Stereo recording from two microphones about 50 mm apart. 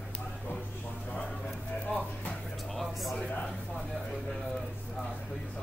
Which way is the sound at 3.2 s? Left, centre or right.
Left.